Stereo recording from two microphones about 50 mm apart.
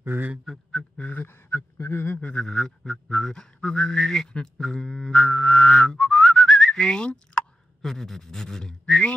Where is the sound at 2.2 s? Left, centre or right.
Left.